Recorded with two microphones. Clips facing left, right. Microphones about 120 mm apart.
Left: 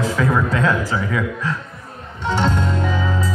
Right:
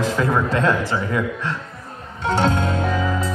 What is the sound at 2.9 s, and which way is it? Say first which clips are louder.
Music: right 1 dB; centre (ahead or behind).